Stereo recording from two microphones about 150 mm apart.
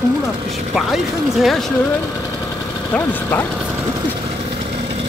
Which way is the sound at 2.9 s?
15° left (ahead or behind).